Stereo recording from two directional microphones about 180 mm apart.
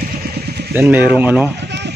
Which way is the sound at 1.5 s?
70° right (ahead or behind).